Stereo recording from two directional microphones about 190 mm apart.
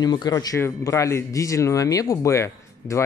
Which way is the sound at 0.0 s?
20° left (ahead or behind).